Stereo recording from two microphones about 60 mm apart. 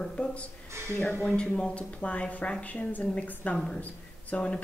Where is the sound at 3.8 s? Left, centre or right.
Left.